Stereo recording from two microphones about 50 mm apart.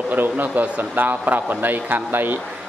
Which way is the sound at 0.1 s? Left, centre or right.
Right.